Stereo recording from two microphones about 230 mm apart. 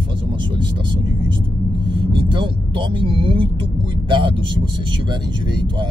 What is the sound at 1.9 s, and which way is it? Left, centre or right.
Speech, right.